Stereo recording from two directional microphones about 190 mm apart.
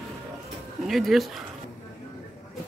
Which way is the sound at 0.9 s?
Centre (ahead or behind).